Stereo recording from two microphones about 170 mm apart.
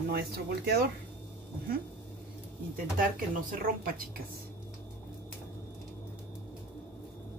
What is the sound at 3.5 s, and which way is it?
Speech, 55° right (ahead or behind).